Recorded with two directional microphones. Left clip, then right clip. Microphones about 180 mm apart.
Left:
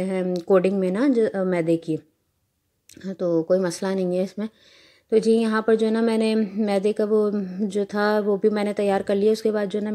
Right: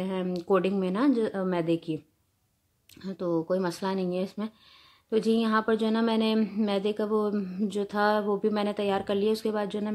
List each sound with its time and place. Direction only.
0.0 s a woman's voice: 20° left (ahead or behind)